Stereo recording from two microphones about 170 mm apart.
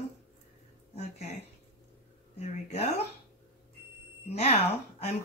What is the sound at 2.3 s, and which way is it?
Speech, 35° left (ahead or behind).